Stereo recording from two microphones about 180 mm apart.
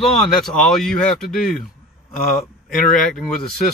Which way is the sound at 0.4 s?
5° left (ahead or behind).